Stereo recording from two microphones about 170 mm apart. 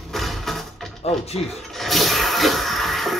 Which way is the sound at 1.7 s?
Centre (ahead or behind).